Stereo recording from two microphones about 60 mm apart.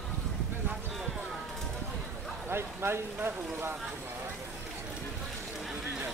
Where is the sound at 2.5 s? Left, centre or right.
Right.